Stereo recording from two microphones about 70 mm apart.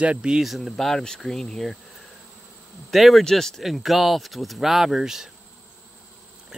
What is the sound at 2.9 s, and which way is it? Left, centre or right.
Speech, centre.